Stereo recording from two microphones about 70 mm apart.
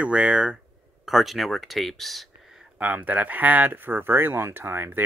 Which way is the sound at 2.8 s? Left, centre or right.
Right.